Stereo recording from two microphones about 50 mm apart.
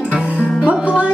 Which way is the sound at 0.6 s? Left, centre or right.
Right.